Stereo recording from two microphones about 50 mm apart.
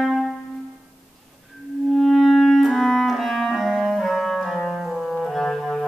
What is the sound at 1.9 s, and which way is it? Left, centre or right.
Clarinet, centre.